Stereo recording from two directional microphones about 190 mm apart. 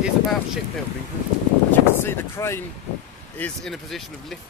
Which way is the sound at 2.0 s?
15° left (ahead or behind).